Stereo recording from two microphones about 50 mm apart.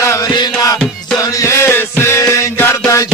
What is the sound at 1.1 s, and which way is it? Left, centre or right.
Music, left.